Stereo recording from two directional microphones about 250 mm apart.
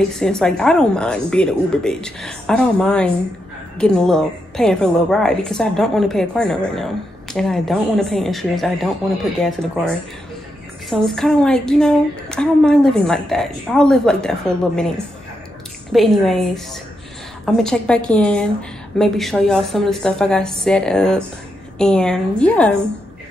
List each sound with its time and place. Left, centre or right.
0.1 s a woman's voice: centre
10.9 s a woman's voice: centre
15.9 s a woman's voice: centre